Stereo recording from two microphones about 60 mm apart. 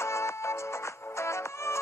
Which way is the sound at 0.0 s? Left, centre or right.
Left.